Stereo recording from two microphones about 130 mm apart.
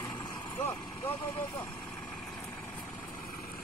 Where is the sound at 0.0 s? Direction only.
30° left (ahead or behind).